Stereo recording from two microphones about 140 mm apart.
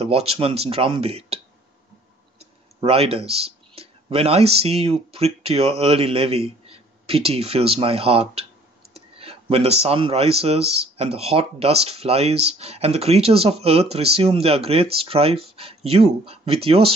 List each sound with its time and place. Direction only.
0.0 s speech: 45° right (ahead or behind)